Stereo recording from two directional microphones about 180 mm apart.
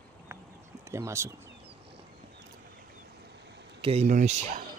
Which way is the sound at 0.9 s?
15° right (ahead or behind).